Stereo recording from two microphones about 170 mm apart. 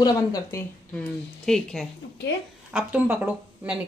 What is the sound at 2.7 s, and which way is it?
Speech, 10° right (ahead or behind).